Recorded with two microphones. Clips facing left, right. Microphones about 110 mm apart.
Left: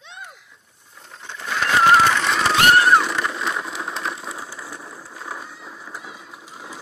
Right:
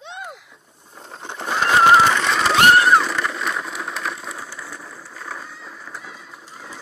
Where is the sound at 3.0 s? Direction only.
10° left (ahead or behind).